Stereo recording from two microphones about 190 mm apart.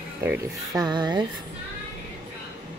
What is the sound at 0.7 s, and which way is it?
Speech, 20° right (ahead or behind).